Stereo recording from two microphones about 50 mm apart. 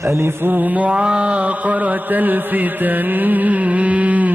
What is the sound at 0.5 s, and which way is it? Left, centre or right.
Mantra, right.